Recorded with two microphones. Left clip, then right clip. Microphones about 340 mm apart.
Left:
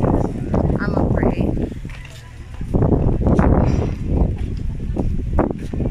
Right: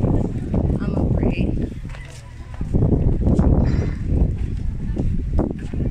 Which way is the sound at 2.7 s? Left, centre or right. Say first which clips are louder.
Left 4 dB; left.